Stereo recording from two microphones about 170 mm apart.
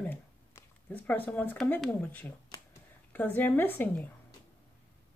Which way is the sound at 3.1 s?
10° left (ahead or behind).